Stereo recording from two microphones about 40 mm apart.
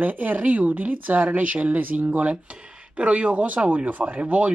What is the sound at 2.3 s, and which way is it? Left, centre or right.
Speech, right.